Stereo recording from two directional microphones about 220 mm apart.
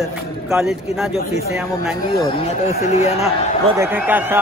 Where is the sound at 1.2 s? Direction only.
40° left (ahead or behind).